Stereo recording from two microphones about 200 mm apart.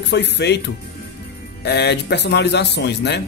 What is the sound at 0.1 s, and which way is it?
Speech, 60° left (ahead or behind).